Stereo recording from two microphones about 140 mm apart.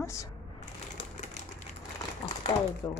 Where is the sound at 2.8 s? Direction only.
25° left (ahead or behind).